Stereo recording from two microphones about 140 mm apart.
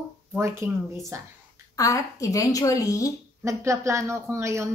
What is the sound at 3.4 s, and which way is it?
Speech, 20° right (ahead or behind).